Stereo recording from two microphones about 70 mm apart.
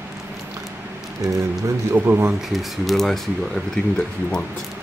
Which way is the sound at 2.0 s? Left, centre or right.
Right.